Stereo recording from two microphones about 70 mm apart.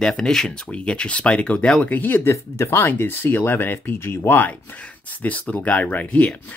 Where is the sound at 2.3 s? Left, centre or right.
Left.